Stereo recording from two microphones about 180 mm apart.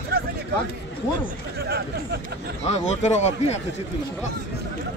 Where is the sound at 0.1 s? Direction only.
60° right (ahead or behind).